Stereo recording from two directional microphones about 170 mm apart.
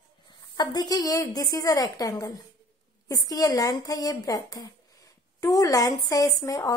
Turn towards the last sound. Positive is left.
turn(degrees=20)  # may be behind; listen again after turning